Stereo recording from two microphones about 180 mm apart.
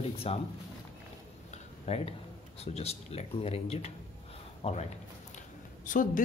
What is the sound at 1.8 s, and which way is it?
Speech, 35° left (ahead or behind).